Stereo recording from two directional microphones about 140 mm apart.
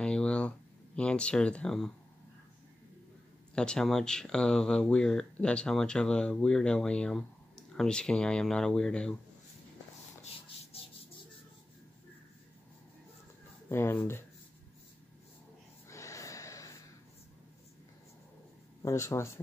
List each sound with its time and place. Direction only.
0.0 s a sound: 5° left (ahead or behind)
0.9 s speech: 5° left (ahead or behind)
3.5 s speech: 5° left (ahead or behind)
13.7 s speech: 15° left (ahead or behind)
15.9 s snort: 20° left (ahead or behind)
18.8 s speech: 20° left (ahead or behind)